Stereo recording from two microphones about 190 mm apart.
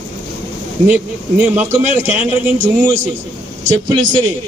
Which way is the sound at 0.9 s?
10° right (ahead or behind).